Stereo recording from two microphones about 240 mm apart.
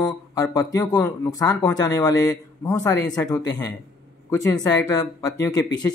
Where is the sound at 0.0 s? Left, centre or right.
Centre.